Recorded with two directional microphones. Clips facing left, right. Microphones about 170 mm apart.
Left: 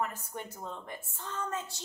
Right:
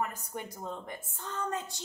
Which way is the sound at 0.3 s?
10° right (ahead or behind).